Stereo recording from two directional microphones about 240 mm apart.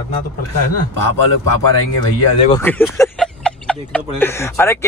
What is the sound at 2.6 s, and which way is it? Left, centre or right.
Speech, centre.